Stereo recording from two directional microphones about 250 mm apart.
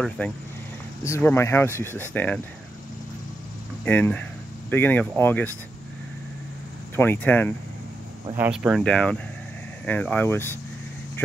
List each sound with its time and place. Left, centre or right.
0.2 s speech: centre
3.8 s speech: centre
7.0 s speech: centre
8.4 s speech: centre